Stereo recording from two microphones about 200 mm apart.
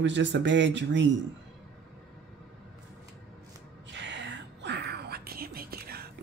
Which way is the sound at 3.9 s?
60° right (ahead or behind).